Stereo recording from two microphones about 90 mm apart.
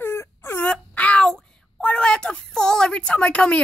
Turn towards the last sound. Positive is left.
turn(degrees=10)  # may be behind; listen again after turning